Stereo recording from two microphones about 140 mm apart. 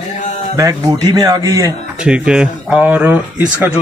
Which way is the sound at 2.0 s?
5° right (ahead or behind).